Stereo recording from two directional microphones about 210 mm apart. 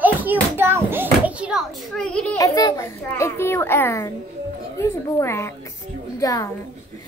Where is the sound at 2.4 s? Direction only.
15° left (ahead or behind).